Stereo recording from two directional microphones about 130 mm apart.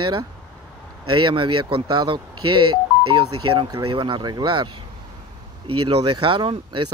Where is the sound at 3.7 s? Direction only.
35° right (ahead or behind).